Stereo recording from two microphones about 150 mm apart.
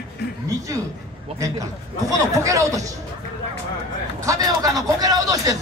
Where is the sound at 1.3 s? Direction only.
20° right (ahead or behind).